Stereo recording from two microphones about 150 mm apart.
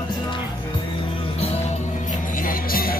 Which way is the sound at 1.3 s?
45° left (ahead or behind).